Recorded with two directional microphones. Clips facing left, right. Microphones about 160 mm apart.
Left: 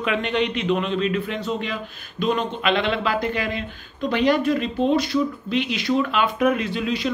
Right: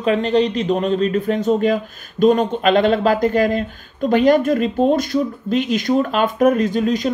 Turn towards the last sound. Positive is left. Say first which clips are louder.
# right 7 dB
turn(degrees=-45)  # may be behind; listen again after turning